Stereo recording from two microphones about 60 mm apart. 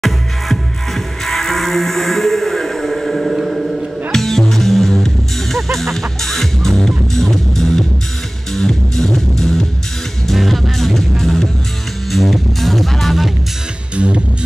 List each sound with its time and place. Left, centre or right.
0.0 s music: centre
13.9 s music: centre